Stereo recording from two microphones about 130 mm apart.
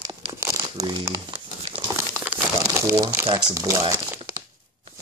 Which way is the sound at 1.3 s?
40° right (ahead or behind).